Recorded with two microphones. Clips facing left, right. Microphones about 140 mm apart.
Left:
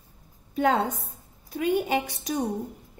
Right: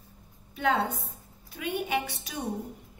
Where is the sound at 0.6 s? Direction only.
45° left (ahead or behind).